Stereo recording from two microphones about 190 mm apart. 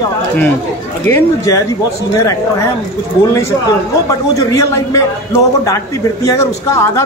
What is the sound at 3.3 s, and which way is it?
Speech, 15° left (ahead or behind).